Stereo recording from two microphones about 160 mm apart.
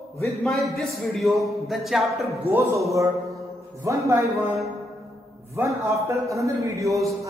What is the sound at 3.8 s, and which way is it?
Speech, 20° right (ahead or behind).